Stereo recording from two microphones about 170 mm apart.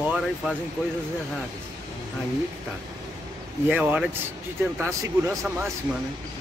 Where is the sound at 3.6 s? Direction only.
10° right (ahead or behind).